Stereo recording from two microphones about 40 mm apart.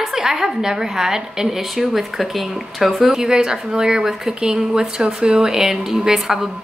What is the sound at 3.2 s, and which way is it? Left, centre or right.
A woman's voice, centre.